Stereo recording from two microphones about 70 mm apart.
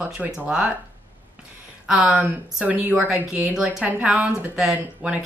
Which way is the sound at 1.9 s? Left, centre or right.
Centre.